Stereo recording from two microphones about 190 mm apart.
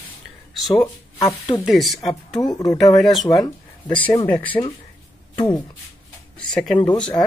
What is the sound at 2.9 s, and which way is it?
Speech, centre (ahead or behind).